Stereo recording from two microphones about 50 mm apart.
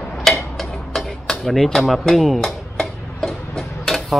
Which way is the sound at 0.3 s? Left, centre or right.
Centre.